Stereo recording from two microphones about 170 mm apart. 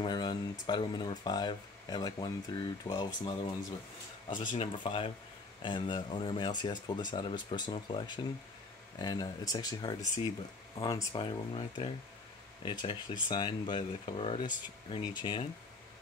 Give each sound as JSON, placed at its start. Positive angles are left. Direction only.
{"t": 0.0, "sound": "speech", "side_deg": 25}
{"t": 4.4, "sound": "speech", "side_deg": 30}